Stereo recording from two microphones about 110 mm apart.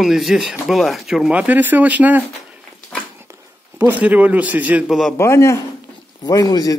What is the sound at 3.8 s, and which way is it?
A man's voice, 15° right (ahead or behind).